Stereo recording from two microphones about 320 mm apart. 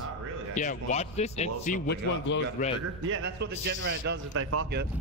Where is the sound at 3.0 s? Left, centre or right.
Right.